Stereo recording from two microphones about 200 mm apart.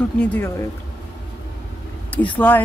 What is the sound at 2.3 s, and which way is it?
Speech, 10° left (ahead or behind).